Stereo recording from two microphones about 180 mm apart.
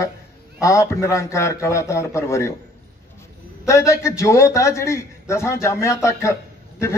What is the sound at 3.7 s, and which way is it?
A man's voice, 15° left (ahead or behind).